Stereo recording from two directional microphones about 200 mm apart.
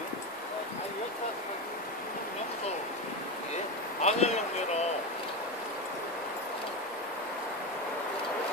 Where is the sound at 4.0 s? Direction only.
35° left (ahead or behind).